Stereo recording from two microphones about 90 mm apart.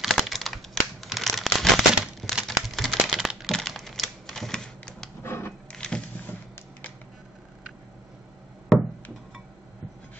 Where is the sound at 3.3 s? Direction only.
Centre (ahead or behind).